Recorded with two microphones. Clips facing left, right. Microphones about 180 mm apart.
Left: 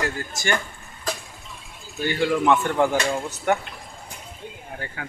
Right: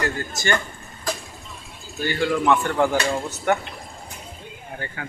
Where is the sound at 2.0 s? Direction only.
15° left (ahead or behind).